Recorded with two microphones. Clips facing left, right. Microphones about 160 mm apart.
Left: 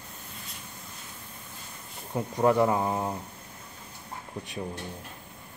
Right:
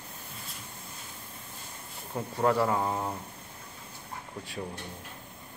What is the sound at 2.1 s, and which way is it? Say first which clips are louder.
Speech: left 3 dB; 15° left (ahead or behind).